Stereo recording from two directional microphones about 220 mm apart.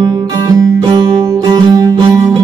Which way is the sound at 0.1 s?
15° right (ahead or behind).